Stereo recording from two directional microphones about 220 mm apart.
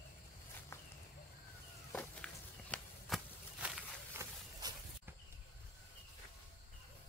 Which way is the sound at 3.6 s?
5° right (ahead or behind).